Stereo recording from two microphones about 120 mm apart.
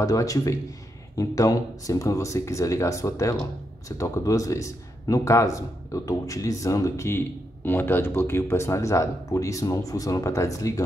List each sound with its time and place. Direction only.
0.0 s speech: 30° left (ahead or behind)